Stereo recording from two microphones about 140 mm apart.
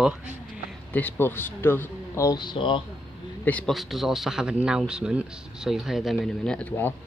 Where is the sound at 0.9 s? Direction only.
10° left (ahead or behind); by 2.8 s 35° left (ahead or behind).